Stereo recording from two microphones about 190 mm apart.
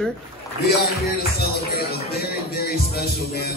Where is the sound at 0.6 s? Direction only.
55° left (ahead or behind).